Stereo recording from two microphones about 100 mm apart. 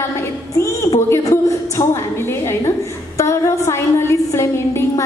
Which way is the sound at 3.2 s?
30° left (ahead or behind).